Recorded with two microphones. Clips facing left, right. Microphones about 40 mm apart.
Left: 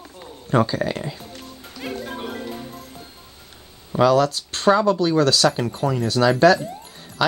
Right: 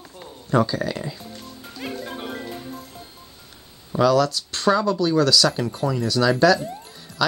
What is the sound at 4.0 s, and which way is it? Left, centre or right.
Speech, left.